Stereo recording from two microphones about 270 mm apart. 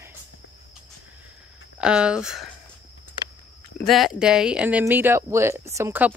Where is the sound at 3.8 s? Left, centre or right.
Centre.